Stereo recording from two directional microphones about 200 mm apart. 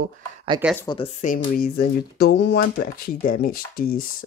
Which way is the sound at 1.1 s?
40° left (ahead or behind).